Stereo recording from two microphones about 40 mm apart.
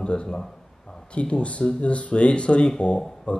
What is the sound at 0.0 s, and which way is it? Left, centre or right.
A man's voice, left.